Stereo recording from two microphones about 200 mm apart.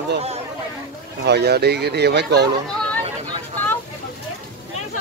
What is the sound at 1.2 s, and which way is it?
Speech, 55° right (ahead or behind).